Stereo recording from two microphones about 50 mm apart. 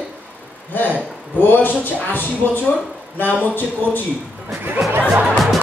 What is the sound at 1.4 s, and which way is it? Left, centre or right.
Speech, left.